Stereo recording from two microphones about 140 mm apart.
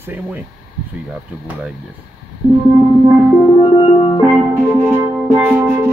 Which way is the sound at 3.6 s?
40° left (ahead or behind).